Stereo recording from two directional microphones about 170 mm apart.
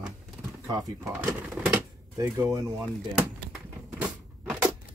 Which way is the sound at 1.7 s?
15° right (ahead or behind).